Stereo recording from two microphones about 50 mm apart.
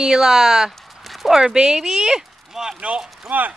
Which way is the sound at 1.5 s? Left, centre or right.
Centre.